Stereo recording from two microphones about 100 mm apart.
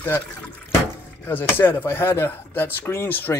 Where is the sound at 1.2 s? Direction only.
20° left (ahead or behind).